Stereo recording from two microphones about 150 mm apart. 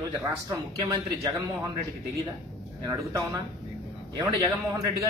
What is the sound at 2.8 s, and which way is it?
Speech, 20° right (ahead or behind).